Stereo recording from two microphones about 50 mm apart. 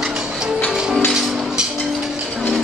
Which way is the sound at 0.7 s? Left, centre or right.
Centre.